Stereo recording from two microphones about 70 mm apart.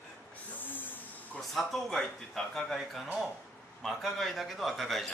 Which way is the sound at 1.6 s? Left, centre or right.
Centre.